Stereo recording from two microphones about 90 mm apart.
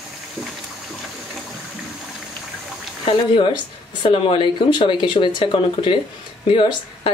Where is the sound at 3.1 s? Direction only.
75° left (ahead or behind).